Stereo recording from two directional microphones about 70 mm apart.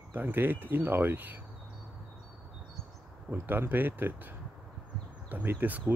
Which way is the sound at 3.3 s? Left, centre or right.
Right.